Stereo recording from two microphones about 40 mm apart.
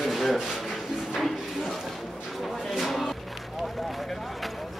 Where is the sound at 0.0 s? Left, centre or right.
Centre.